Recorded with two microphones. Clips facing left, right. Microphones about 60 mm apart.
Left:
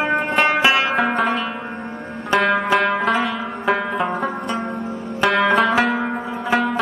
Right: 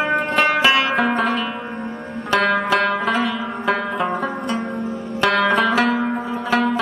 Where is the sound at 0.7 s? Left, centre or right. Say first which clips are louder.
Even; centre.